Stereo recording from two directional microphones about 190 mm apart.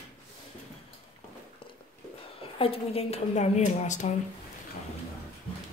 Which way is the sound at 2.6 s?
30° left (ahead or behind).